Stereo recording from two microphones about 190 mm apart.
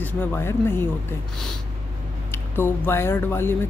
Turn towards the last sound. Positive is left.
turn(degrees=10)  # may be behind; listen again after turning